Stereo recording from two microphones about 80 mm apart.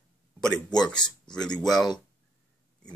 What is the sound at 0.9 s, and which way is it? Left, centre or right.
Speech, left.